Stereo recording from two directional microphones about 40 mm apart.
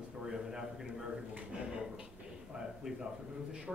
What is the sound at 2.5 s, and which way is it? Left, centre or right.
Speech, centre.